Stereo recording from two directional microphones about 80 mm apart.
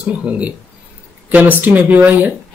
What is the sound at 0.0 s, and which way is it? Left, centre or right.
Speech, centre.